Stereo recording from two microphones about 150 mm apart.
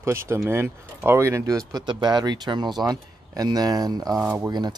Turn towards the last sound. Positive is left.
turn(degrees=-20)  # may be behind; listen again after turning